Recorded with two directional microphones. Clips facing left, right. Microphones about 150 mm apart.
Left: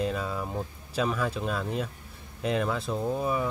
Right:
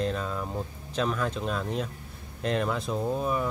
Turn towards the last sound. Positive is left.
turn(degrees=0)  # may be behind; listen again after turning